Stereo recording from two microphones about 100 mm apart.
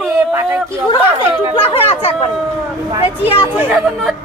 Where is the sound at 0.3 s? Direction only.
25° right (ahead or behind).